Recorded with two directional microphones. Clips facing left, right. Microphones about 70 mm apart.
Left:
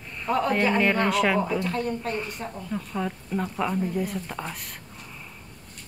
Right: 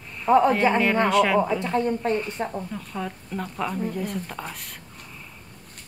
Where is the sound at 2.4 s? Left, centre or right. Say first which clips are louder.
Right 6 dB; right.